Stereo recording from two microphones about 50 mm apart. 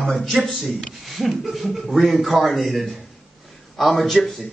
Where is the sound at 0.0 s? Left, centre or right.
Centre.